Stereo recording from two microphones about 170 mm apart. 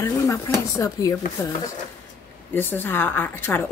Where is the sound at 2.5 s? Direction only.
10° left (ahead or behind).